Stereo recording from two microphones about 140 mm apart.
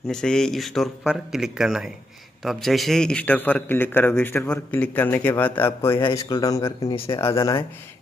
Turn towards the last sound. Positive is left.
turn(degrees=40)  # may be behind; listen again after turning